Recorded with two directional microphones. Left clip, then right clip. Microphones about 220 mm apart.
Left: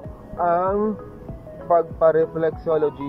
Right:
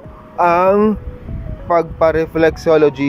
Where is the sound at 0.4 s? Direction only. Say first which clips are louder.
Right 8 dB; 35° right (ahead or behind).